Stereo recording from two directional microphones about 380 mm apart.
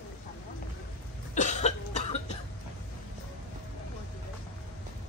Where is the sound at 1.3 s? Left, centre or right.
Centre.